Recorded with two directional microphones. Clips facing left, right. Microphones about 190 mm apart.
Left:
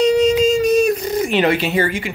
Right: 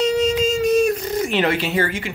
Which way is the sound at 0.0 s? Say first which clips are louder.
Left 5 dB; 15° left (ahead or behind).